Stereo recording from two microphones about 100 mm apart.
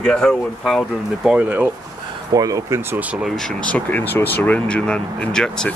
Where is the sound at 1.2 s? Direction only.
15° right (ahead or behind).